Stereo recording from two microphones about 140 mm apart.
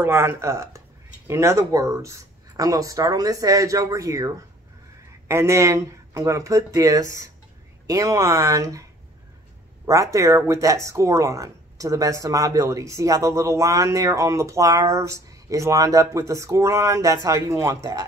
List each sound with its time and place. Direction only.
0.0 s speech: 15° right (ahead or behind)
5.3 s speech: 20° right (ahead or behind)
9.8 s speech: 20° right (ahead or behind)